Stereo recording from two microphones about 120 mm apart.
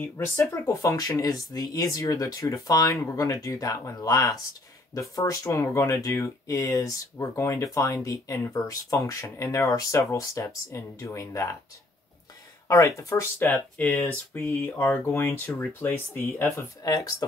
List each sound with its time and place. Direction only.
0.0 s speech: 20° left (ahead or behind)
12.6 s speech: 25° left (ahead or behind)